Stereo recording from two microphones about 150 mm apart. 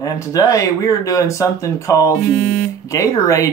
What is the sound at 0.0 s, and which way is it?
Speech, 20° left (ahead or behind).